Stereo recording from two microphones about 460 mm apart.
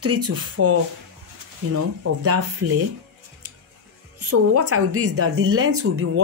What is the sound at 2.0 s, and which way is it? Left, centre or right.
Speech, right.